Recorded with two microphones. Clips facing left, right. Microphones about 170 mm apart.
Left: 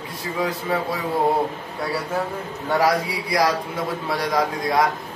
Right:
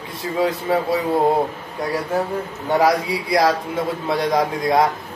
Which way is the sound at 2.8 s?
25° right (ahead or behind).